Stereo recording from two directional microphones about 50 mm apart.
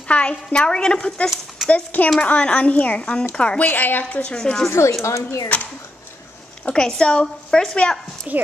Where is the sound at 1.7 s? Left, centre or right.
Left.